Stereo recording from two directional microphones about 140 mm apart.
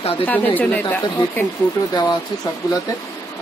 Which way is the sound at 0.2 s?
10° left (ahead or behind).